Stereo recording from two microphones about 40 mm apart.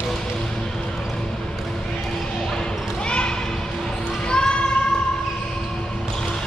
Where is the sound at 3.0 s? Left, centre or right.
Left.